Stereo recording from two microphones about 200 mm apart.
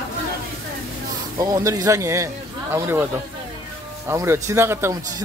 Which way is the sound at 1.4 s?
15° right (ahead or behind).